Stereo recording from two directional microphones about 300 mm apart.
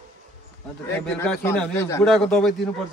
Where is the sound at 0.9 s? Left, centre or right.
Centre.